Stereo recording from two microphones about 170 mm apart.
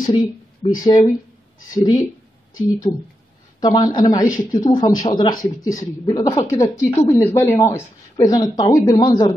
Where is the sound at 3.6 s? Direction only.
25° left (ahead or behind).